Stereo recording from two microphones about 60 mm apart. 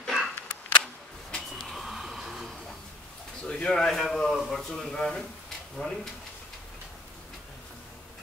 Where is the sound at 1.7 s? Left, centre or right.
Centre.